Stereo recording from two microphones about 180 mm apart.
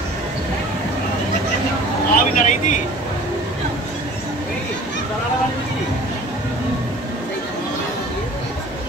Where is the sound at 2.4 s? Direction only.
40° left (ahead or behind).